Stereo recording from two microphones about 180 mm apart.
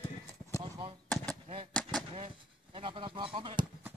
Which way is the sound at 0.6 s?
25° right (ahead or behind).